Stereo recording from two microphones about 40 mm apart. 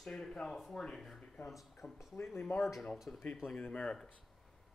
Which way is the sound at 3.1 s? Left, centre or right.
Left.